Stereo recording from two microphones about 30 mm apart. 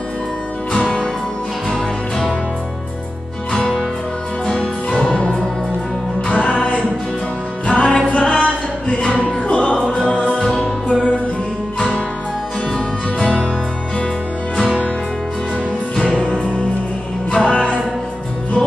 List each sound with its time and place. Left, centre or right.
3.5 s music: centre
5.0 s music: left
8.2 s a sound: left
9.2 s music: left
13.2 s music: left
16.0 s music: left